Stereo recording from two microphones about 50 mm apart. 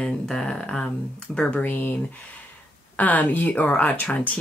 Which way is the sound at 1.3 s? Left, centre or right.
Left.